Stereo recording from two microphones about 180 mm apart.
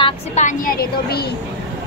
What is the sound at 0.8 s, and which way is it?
Speech, 60° left (ahead or behind).